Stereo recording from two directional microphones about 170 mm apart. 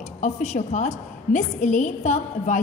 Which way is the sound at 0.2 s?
45° left (ahead or behind).